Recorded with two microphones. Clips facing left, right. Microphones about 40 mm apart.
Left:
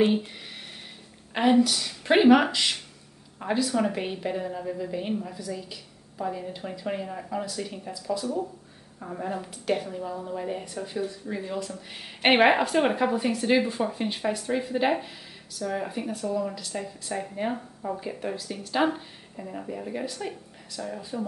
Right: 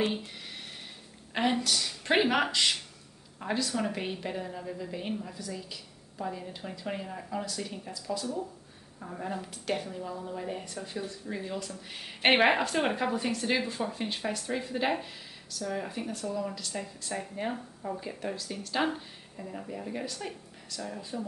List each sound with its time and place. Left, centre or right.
0.0 s speech: centre
1.3 s a woman's voice: centre